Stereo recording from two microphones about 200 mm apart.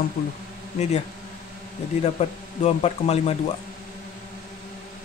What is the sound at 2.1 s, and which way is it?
Speech, 30° left (ahead or behind).